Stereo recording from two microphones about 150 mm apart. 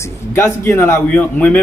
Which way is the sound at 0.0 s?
20° left (ahead or behind).